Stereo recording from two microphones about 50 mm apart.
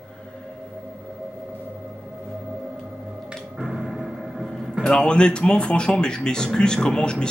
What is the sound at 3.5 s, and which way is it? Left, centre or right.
Music, centre.